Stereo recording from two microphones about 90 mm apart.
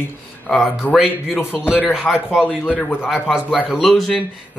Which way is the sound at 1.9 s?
5° right (ahead or behind).